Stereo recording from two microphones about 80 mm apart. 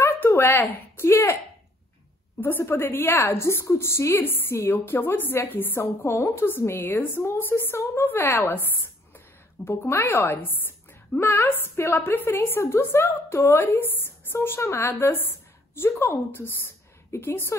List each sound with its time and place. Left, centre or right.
0.0 s speech: left
2.4 s a woman's voice: left